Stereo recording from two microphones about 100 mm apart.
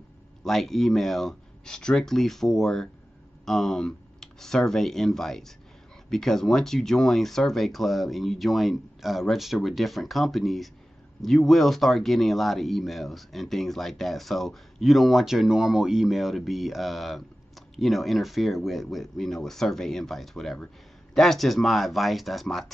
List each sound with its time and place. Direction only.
0.4 s speech: centre (ahead or behind)